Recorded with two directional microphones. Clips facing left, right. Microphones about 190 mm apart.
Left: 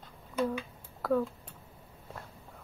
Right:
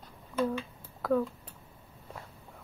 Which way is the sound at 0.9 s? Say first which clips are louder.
Right 1 dB; centre (ahead or behind).